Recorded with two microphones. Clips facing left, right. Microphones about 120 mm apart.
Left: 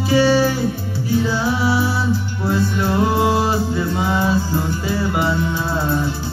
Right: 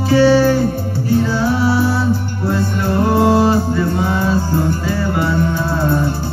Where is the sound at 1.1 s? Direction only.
45° right (ahead or behind).